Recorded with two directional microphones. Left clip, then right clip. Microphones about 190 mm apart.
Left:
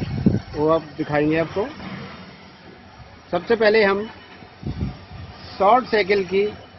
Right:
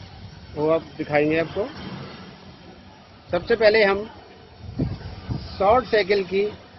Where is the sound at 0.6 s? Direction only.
50° left (ahead or behind).